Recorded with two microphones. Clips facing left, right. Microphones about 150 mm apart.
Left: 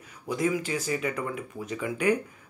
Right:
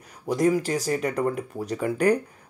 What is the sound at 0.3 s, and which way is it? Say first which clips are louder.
Speech: right 5 dB; 40° right (ahead or behind).